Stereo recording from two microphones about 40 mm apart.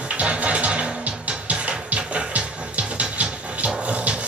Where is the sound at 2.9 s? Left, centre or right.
Right.